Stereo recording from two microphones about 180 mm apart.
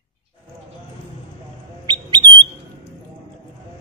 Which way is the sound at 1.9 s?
25° right (ahead or behind).